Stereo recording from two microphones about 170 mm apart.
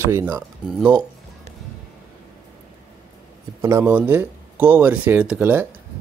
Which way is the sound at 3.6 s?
15° right (ahead or behind).